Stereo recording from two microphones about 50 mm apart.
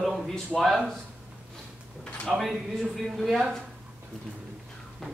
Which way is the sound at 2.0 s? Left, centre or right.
Left.